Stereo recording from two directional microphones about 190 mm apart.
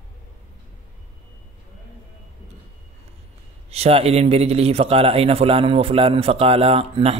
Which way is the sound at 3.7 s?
30° right (ahead or behind).